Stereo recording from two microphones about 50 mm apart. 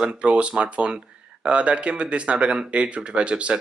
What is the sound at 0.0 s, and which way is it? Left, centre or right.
Speech, right.